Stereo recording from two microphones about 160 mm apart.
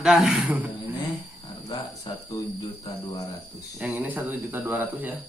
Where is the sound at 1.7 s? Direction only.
25° left (ahead or behind).